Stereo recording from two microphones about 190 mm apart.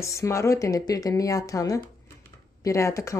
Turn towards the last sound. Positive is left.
turn(degrees=15)  # may be behind; listen again after turning